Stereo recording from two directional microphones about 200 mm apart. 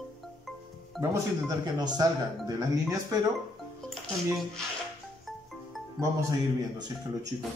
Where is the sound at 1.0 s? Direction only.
15° right (ahead or behind).